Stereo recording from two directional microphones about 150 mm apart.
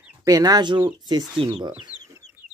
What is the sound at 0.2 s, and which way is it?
Speech, 25° right (ahead or behind).